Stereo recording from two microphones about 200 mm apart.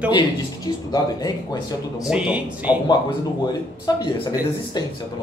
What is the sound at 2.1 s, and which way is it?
Speech, 5° right (ahead or behind).